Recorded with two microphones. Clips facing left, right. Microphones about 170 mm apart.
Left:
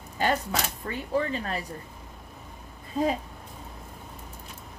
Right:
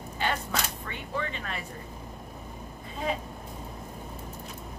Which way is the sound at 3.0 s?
40° left (ahead or behind).